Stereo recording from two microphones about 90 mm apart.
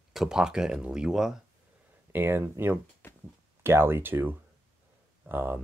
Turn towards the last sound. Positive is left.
turn(degrees=-25)  # may be behind; listen again after turning